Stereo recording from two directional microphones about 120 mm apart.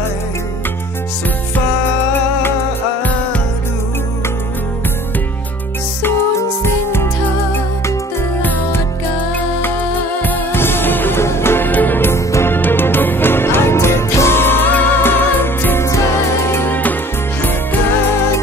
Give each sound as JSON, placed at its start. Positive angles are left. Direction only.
{"t": 6.6, "sound": "music", "side_deg": 20}
{"t": 10.2, "sound": "music", "side_deg": 15}